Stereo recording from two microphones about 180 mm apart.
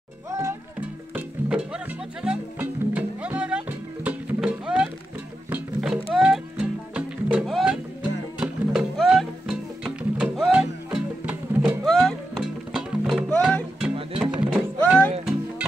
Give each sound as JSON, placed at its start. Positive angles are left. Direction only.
{"t": 0.3, "sound": "music", "side_deg": -15}
{"t": 14.2, "sound": "music", "side_deg": -5}